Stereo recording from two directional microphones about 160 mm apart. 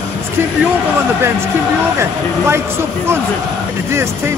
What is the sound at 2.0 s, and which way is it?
Speech, 15° right (ahead or behind).